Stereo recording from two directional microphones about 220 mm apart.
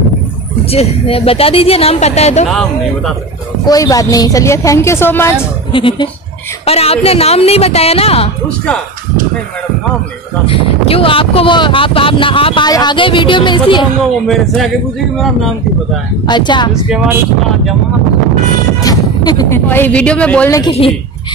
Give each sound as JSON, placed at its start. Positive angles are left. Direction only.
{"t": 0.7, "sound": "speech", "side_deg": 25}
{"t": 3.6, "sound": "a woman's voice", "side_deg": 15}
{"t": 5.7, "sound": "speech", "side_deg": 20}
{"t": 10.4, "sound": "speech", "side_deg": 25}
{"t": 14.2, "sound": "speech", "side_deg": 0}
{"t": 16.3, "sound": "speech", "side_deg": 20}
{"t": 16.9, "sound": "speech", "side_deg": -5}
{"t": 18.8, "sound": "speech", "side_deg": 15}